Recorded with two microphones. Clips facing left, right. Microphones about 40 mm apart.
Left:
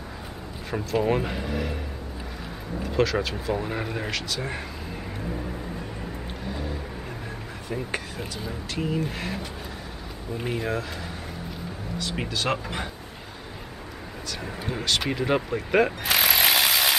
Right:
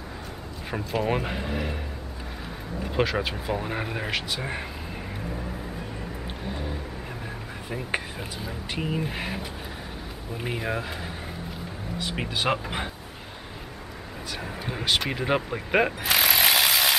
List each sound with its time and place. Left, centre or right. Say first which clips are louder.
0.7 s speech: left 2 dB; centre
2.8 s speech: left 1 dB; centre
6.4 s vehicle: left 1 dB; centre
7.7 s speech: even; centre
8.7 s speech: left 1 dB; centre
14.4 s speech: left 1 dB; centre
16.0 s ratchet: even; centre